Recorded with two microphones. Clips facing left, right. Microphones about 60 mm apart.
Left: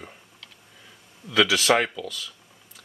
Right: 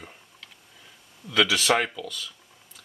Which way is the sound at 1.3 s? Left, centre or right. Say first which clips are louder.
Left 2 dB; centre.